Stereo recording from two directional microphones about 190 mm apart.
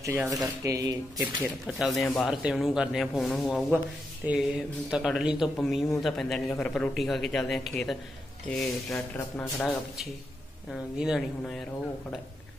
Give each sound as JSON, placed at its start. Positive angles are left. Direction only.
{"t": 0.0, "sound": "speech", "side_deg": -10}
{"t": 1.2, "sound": "speech", "side_deg": 0}
{"t": 10.7, "sound": "speech", "side_deg": 0}